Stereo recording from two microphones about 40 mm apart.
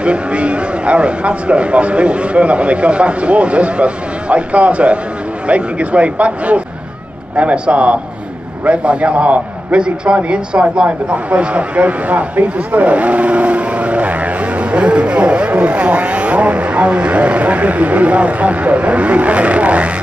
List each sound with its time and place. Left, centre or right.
0.0 s a man's voice: right
9.8 s a woman's voice: right